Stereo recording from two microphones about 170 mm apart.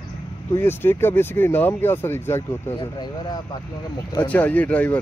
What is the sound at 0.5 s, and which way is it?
Speech, 15° left (ahead or behind).